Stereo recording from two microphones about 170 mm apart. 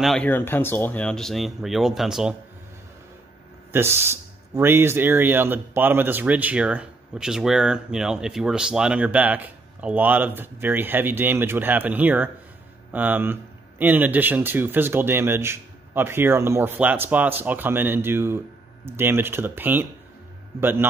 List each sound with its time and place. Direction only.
0.0 s speech: 5° left (ahead or behind)
3.7 s speech: 15° right (ahead or behind)